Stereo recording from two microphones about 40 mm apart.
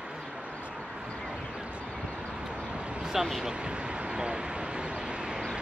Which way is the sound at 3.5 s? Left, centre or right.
Right.